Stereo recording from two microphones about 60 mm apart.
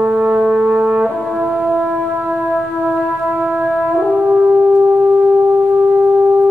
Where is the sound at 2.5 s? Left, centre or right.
Centre.